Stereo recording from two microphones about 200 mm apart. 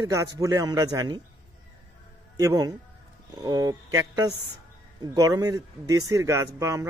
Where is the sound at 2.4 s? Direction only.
20° right (ahead or behind).